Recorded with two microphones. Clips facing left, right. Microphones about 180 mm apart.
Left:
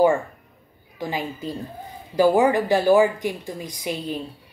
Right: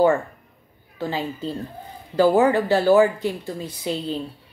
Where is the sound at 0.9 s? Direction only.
15° left (ahead or behind).